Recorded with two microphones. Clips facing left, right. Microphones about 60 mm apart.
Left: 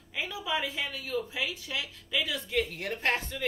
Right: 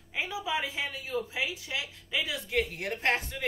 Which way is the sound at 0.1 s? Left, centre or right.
Centre.